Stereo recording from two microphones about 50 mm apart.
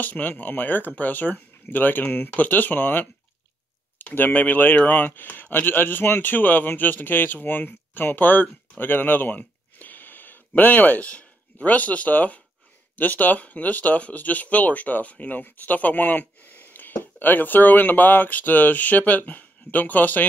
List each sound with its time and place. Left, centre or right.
0.0 s speech: left
4.0 s a sound: left
4.3 s speech: left